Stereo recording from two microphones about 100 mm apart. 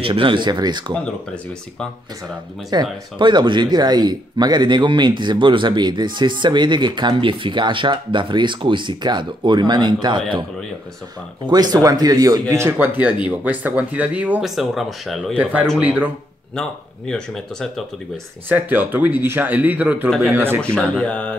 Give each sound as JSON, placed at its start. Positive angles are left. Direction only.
{"t": 0.0, "sound": "speech", "side_deg": -60}
{"t": 1.0, "sound": "speech", "side_deg": 10}
{"t": 2.2, "sound": "speech", "side_deg": -45}
{"t": 11.4, "sound": "speech", "side_deg": -40}
{"t": 13.0, "sound": "speech", "side_deg": -15}
{"t": 14.4, "sound": "speech", "side_deg": 0}
{"t": 15.8, "sound": "speech", "side_deg": -15}
{"t": 16.5, "sound": "speech", "side_deg": 5}
{"t": 18.5, "sound": "speech", "side_deg": -20}
{"t": 20.6, "sound": "speech", "side_deg": 10}